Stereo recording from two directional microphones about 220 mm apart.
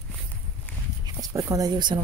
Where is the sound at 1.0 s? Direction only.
15° right (ahead or behind).